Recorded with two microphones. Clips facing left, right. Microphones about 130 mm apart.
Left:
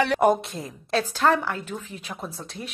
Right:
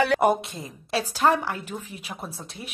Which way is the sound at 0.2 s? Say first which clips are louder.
Left 1 dB; 10° right (ahead or behind).